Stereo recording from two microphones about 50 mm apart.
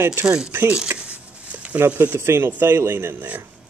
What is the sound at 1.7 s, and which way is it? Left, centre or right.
Speech, right.